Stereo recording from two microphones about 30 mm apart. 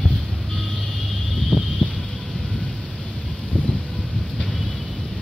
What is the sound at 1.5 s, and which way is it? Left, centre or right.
Vehicle, right.